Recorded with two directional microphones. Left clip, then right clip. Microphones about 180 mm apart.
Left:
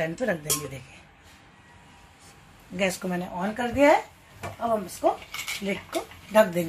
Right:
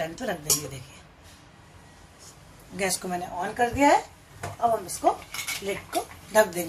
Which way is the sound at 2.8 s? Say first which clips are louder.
Left 2 dB; 40° left (ahead or behind).